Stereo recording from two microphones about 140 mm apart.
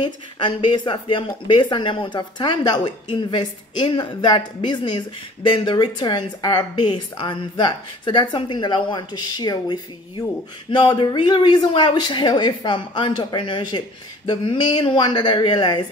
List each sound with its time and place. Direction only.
0.0 s speech: 35° left (ahead or behind)